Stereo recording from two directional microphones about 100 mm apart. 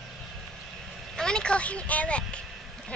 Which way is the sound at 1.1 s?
10° left (ahead or behind).